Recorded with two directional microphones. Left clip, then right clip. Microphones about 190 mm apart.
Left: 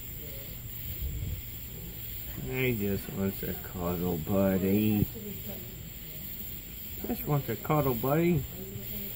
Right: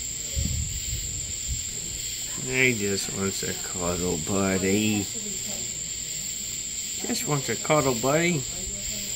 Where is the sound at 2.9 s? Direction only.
20° right (ahead or behind).